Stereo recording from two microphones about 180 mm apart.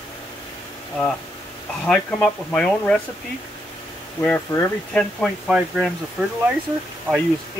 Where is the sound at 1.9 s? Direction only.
5° left (ahead or behind).